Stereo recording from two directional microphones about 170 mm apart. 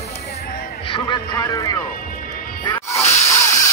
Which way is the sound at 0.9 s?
20° left (ahead or behind).